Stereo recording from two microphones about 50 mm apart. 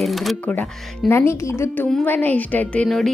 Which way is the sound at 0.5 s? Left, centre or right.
Left.